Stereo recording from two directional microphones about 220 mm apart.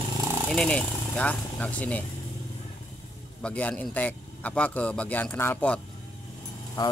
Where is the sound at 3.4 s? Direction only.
5° left (ahead or behind).